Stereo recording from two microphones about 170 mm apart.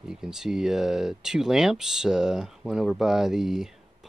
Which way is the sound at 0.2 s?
5° right (ahead or behind).